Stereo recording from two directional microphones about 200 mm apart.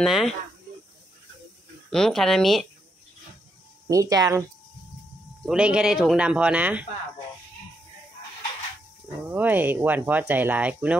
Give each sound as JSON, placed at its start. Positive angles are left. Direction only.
{"t": 0.0, "sound": "speech", "side_deg": 0}
{"t": 1.9, "sound": "speech", "side_deg": 0}
{"t": 3.9, "sound": "speech", "side_deg": -15}
{"t": 5.4, "sound": "speech", "side_deg": -5}
{"t": 9.3, "sound": "speech", "side_deg": -10}